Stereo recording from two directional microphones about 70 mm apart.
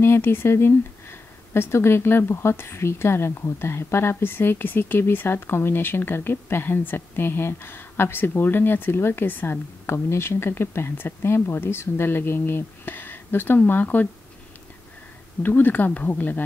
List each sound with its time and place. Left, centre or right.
0.0 s speech: left
15.4 s speech: left